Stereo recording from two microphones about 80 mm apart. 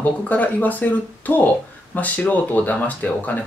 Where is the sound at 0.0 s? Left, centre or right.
Left.